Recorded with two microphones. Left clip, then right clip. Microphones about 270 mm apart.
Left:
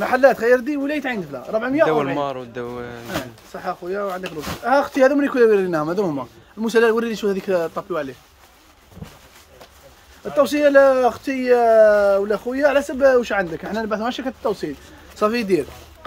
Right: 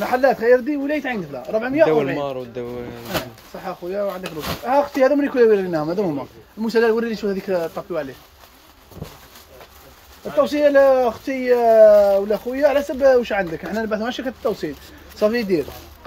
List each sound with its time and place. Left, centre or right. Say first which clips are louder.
0.0 s speech: left 2 dB; left
7.6 s speech: left 1 dB; left
10.4 s speech: left 1 dB; centre
11.9 s speech: right 2 dB; left
12.3 s speech: even; left